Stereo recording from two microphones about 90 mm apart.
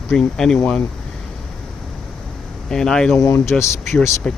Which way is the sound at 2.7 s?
5° left (ahead or behind).